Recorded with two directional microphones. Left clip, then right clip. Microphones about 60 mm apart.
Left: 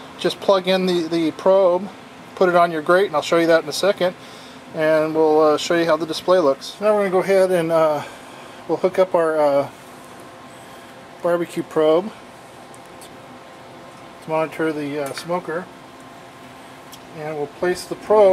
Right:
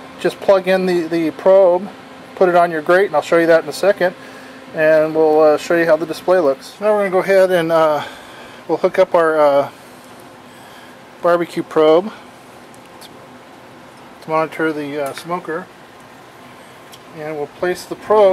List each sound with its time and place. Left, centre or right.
0.2 s speech: right
6.9 s speech: centre
11.6 s speech: right
14.3 s speech: centre
14.8 s speech: centre
17.2 s speech: centre
17.6 s speech: centre